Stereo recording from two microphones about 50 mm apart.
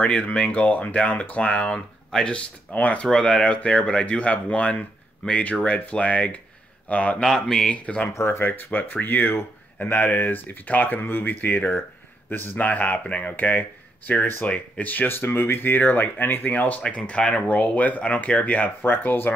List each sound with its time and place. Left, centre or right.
0.0 s speech: left
7.2 s speech: centre
7.7 s speech: left
8.1 s speech: left
16.4 s speech: left
18.8 s speech: left